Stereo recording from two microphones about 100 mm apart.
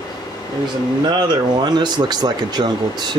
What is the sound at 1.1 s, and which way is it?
Speech, 45° right (ahead or behind).